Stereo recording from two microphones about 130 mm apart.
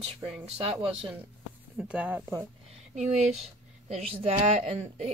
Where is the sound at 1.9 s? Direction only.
10° right (ahead or behind).